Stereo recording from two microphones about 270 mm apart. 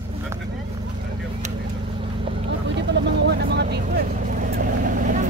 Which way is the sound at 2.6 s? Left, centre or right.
Right.